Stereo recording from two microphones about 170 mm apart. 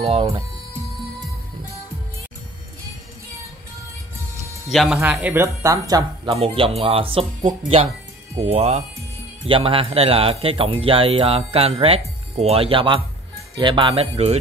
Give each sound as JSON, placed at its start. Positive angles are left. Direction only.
{"t": 0.0, "sound": "speech", "side_deg": -35}
{"t": 4.6, "sound": "speech", "side_deg": 0}
{"t": 6.3, "sound": "speech", "side_deg": -35}